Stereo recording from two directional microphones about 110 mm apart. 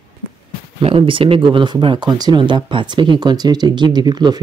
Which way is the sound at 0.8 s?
55° right (ahead or behind).